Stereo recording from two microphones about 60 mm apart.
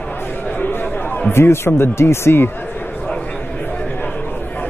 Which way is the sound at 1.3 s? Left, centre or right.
Left.